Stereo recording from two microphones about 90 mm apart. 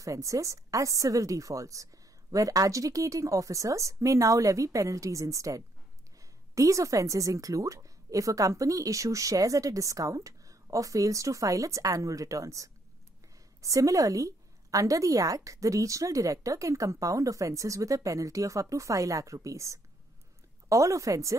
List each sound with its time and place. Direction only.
0.0 s a woman's voice: 35° right (ahead or behind)